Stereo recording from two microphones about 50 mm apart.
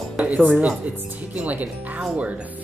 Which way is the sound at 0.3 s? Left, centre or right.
Right.